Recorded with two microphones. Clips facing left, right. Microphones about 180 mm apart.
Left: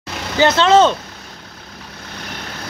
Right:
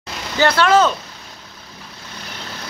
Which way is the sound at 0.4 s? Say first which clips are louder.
Left 3 dB; 25° left (ahead or behind).